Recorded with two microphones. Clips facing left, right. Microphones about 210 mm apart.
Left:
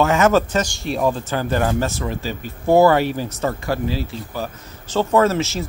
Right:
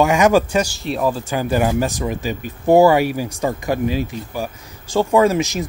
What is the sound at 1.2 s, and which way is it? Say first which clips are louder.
Speech: right 2 dB; 10° right (ahead or behind).